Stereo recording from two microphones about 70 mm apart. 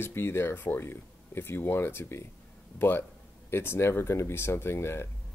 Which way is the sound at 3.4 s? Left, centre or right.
Left.